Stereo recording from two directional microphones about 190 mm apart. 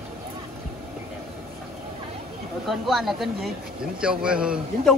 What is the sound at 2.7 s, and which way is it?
Speech, centre (ahead or behind).